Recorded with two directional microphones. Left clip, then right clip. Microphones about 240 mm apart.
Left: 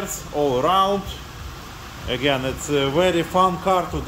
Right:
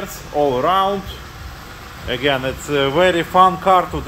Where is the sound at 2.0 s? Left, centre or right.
Centre.